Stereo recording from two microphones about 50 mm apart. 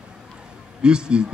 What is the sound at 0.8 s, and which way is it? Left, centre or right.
Speech, centre.